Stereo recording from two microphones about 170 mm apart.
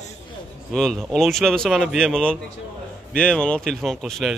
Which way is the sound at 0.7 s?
Centre (ahead or behind).